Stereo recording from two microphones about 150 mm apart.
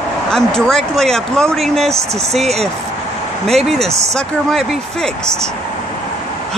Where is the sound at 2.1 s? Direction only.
45° right (ahead or behind).